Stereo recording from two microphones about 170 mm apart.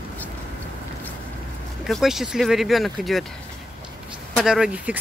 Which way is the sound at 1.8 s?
Centre (ahead or behind).